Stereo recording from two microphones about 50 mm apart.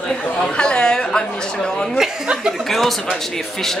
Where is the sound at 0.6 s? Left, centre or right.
Centre.